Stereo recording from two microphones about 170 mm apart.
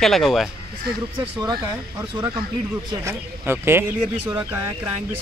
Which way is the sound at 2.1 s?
25° right (ahead or behind).